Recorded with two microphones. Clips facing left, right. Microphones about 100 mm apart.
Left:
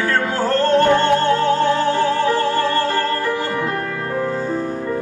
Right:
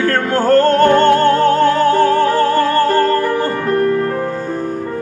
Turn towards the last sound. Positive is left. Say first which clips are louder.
# right 6 dB
turn(degrees=-50)  # may be behind; listen again after turning